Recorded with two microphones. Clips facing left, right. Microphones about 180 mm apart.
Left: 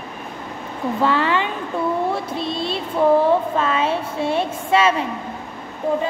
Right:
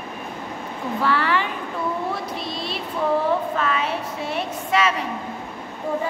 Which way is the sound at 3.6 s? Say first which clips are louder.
Left 4 dB; 25° left (ahead or behind).